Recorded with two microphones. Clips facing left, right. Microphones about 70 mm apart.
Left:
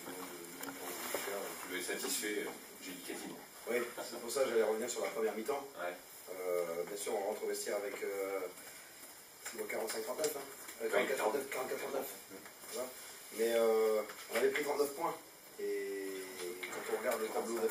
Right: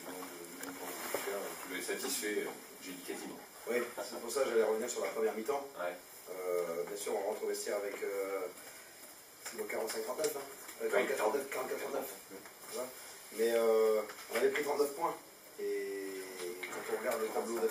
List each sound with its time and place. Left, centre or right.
0.1 s a sound: centre
2.9 s speech: centre
9.5 s speech: centre
13.4 s speech: centre
16.3 s music: centre
16.8 s speech: centre